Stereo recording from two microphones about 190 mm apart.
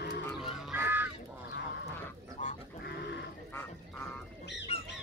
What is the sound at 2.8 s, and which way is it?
Livestock, 60° left (ahead or behind).